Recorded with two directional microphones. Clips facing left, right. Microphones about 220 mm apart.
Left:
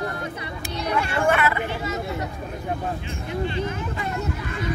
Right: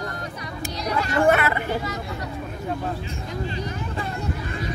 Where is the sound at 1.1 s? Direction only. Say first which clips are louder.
Right 4 dB; 40° right (ahead or behind).